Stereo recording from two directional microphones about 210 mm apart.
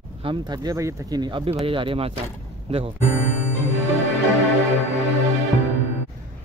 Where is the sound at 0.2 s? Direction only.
20° right (ahead or behind).